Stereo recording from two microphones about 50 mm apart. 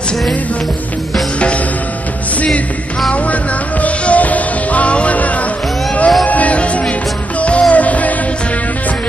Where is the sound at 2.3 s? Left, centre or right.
Left.